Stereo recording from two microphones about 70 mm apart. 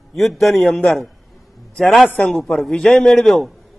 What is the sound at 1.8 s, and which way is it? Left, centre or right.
Speech, centre.